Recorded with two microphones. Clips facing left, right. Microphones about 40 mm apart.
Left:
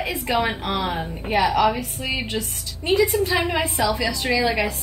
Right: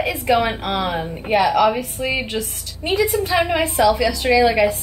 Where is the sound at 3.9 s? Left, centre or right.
Centre.